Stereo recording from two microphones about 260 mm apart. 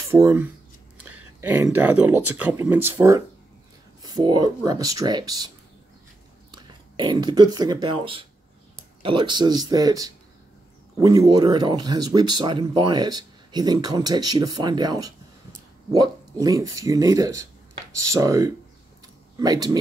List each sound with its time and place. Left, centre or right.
0.1 s speech: centre
6.5 s speech: centre